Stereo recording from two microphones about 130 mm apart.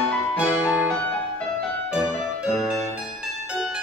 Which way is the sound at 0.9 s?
15° left (ahead or behind).